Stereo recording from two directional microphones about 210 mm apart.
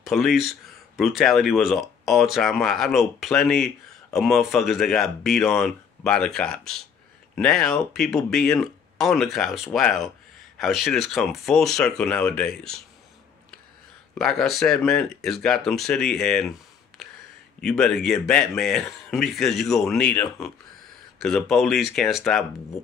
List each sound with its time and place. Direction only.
0.0 s speech: centre (ahead or behind)
14.1 s speech: centre (ahead or behind)
17.6 s speech: centre (ahead or behind)